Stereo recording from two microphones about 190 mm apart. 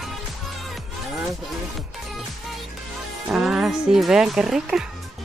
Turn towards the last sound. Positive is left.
turn(degrees=-5)  # may be behind; listen again after turning